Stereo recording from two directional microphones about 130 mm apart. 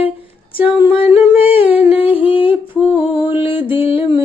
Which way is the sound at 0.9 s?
45° left (ahead or behind).